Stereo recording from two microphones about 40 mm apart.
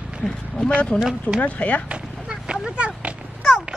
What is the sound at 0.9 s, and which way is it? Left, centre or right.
Speech, left.